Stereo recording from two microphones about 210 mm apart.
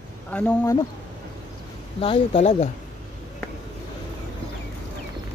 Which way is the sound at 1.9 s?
25° left (ahead or behind).